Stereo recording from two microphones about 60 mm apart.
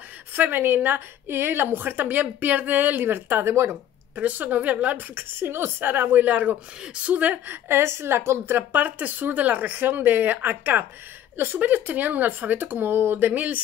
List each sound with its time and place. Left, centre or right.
0.3 s a woman's voice: right
4.2 s speech: right
5.1 s a woman's voice: right
7.6 s a woman's voice: right
8.5 s a woman's voice: right
11.6 s speech: right